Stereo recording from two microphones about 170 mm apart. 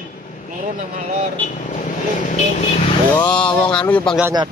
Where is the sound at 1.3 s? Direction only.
50° left (ahead or behind).